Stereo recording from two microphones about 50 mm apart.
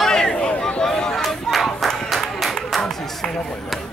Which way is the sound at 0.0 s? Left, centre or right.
Centre.